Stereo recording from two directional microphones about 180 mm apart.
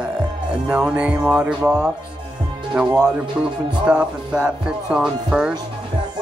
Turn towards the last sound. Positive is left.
turn(degrees=-5)  # may be behind; listen again after turning